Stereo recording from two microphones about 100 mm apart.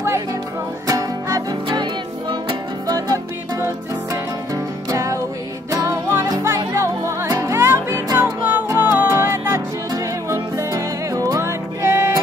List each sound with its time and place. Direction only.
0.8 s music: 35° right (ahead or behind)
1.7 s music: 55° right (ahead or behind)
2.9 s music: 40° right (ahead or behind)
4.8 s music: 35° right (ahead or behind)